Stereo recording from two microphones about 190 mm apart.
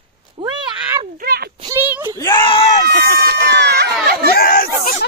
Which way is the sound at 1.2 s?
55° right (ahead or behind).